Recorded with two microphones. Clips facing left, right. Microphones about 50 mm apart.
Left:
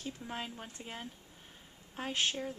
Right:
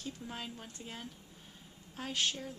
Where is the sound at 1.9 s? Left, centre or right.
Left.